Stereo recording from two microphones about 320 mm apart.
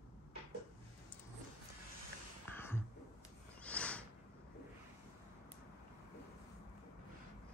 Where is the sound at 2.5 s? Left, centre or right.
Centre.